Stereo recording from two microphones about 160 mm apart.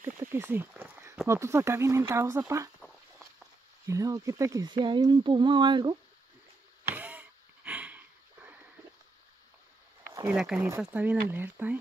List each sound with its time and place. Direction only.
0.0 s speech: 15° right (ahead or behind)
3.8 s speech: 20° right (ahead or behind)
6.8 s a sound: 10° right (ahead or behind)
10.3 s speech: 5° right (ahead or behind)